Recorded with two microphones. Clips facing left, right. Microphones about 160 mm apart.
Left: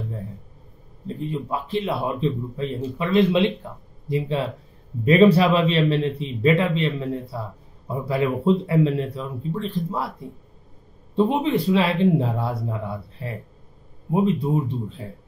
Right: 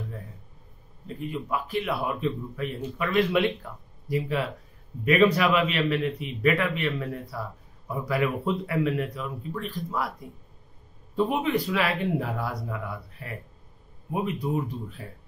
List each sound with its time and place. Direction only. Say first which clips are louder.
1.0 s a man's voice: left 5 dB; 30° left (ahead or behind)